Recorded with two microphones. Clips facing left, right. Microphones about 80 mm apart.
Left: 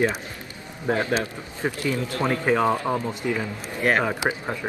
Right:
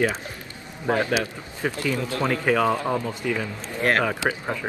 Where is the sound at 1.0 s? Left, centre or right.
Left.